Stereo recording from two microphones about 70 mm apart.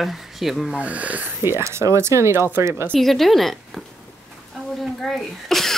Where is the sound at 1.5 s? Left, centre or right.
Right.